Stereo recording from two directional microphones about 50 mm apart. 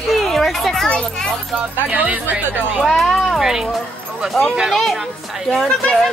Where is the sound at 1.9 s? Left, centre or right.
Right.